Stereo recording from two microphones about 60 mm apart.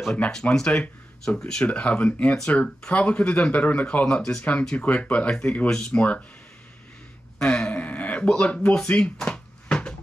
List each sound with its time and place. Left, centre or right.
0.6 s speech: centre
5.7 s speech: centre
7.4 s speech: centre
7.7 s a sound: left